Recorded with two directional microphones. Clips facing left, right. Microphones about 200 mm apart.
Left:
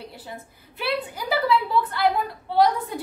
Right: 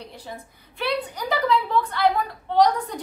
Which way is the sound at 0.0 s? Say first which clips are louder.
Even; 5° left (ahead or behind).